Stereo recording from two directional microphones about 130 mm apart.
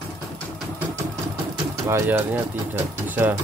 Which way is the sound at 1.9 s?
20° right (ahead or behind).